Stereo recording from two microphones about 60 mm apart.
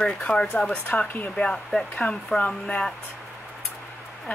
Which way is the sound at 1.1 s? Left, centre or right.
Left.